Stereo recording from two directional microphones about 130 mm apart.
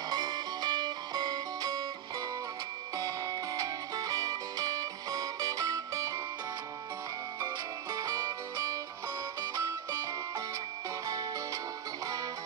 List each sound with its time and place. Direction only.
0.1 s music: 30° right (ahead or behind)
3.0 s music: 25° right (ahead or behind)
7.3 s music: 30° right (ahead or behind)
11.1 s music: 25° right (ahead or behind)